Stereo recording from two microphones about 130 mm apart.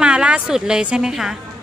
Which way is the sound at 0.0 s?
10° right (ahead or behind).